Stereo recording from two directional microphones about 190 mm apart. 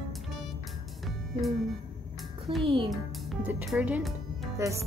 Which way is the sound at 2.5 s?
25° right (ahead or behind).